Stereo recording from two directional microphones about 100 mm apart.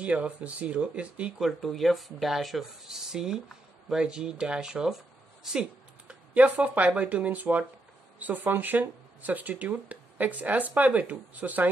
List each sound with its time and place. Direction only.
0.0 s speech: 10° right (ahead or behind)
1.4 s speech: centre (ahead or behind); by 11.7 s 15° right (ahead or behind)